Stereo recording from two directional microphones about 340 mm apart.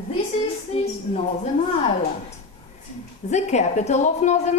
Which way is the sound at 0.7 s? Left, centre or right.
Centre.